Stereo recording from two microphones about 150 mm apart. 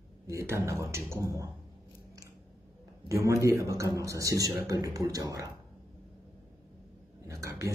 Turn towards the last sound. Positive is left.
turn(degrees=-20)  # may be behind; listen again after turning